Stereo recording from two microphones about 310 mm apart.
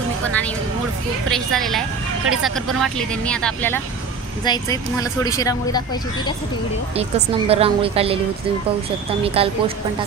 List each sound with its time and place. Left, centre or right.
1.3 s speech: centre
7.0 s a woman's voice: centre
9.2 s a woman's voice: centre